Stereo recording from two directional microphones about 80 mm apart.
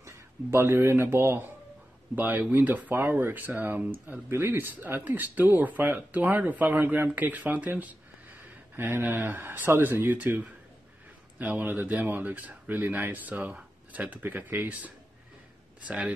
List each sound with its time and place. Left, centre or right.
0.0 s speech: right
2.1 s speech: right